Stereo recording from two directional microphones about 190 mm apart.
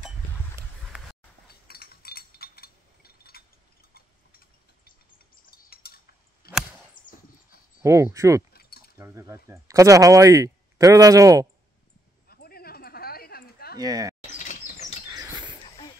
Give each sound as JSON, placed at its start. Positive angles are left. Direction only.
{"t": 1.5, "sound": "a sound", "side_deg": 55}
{"t": 5.5, "sound": "bird", "side_deg": 55}
{"t": 6.4, "sound": "chop", "side_deg": 55}
{"t": 7.0, "sound": "dog", "side_deg": 45}
{"t": 7.8, "sound": "speech", "side_deg": -15}
{"t": 8.5, "sound": "a sound", "side_deg": 55}
{"t": 8.9, "sound": "speech", "side_deg": -15}
{"t": 12.3, "sound": "a sound", "side_deg": 55}
{"t": 13.7, "sound": "speech", "side_deg": -20}
{"t": 14.2, "sound": "chirp", "side_deg": 40}
{"t": 15.0, "sound": "rodents", "side_deg": -20}